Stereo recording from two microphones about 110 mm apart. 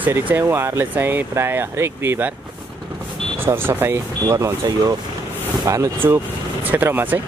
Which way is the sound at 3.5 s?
20° right (ahead or behind).